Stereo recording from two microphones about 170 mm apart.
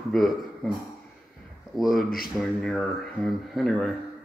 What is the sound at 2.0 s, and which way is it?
Speech, 60° left (ahead or behind).